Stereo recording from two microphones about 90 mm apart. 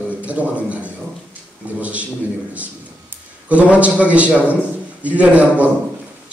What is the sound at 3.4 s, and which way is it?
A man's voice, 15° right (ahead or behind).